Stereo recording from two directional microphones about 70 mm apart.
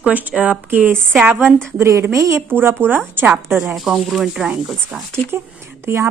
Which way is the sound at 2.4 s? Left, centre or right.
Right.